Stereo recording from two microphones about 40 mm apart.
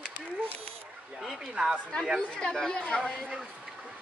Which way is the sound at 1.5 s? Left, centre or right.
Centre.